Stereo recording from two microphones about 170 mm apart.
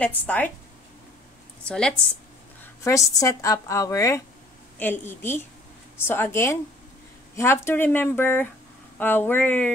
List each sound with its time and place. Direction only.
0.0 s speech: 10° left (ahead or behind)
1.7 s speech: 5° left (ahead or behind)
2.6 s speech: 15° left (ahead or behind)